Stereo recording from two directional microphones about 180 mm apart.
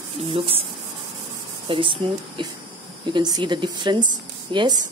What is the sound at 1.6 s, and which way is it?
Speech, 30° right (ahead or behind).